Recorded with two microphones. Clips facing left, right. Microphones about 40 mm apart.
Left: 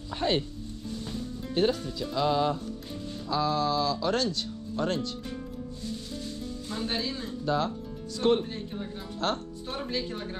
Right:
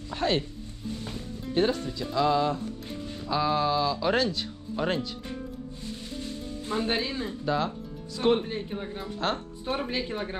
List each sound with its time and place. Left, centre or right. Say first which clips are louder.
0.1 s music: right 1 dB; centre
1.4 s speech: right 1 dB; centre
2.1 s speech: right 2 dB; centre
3.3 s speech: right 2 dB; centre
6.1 s music: right 1 dB; right
7.4 s speech: left 1 dB; centre
8.5 s speech: right 3 dB; right
9.0 s speech: even; centre
9.8 s speech: even; right